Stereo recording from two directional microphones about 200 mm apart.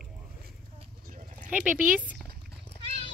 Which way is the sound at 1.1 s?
40° right (ahead or behind).